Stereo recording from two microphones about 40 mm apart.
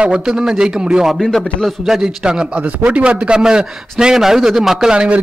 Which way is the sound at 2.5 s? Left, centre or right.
Right.